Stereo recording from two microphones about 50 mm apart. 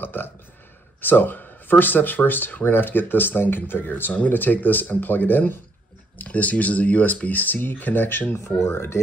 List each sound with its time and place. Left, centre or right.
0.0 s speech: left
6.1 s speech: left
8.6 s speech: left